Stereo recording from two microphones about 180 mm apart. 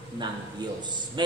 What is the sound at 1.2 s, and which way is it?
Speech, 25° right (ahead or behind).